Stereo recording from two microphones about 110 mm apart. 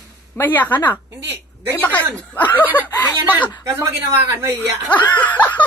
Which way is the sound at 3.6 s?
25° right (ahead or behind).